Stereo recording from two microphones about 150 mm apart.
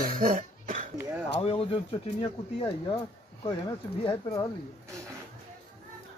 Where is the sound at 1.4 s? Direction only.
40° left (ahead or behind).